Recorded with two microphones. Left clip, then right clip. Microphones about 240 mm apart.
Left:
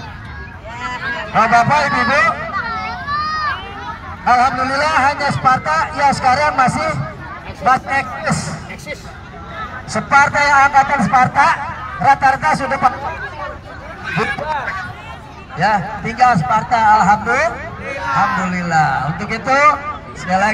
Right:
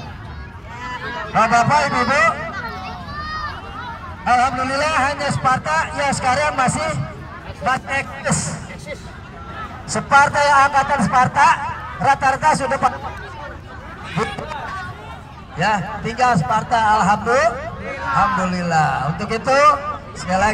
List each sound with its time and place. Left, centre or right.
1.3 s a man's voice: centre
4.2 s a man's voice: centre
9.8 s a man's voice: centre
14.1 s a sound: centre
15.5 s a man's voice: centre
17.8 s a sound: left
18.4 s a man's voice: right